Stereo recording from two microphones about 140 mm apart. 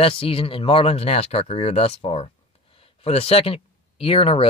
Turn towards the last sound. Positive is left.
turn(degrees=40)  # may be behind; listen again after turning